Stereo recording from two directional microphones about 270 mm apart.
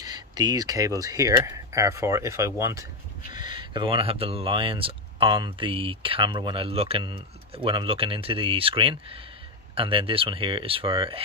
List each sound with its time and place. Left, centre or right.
0.0 s speech: centre